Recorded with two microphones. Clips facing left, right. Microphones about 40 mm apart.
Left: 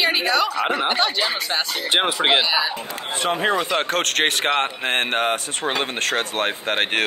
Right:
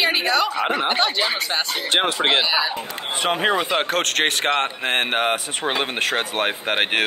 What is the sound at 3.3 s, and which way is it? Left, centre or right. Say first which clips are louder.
Speech: even; centre.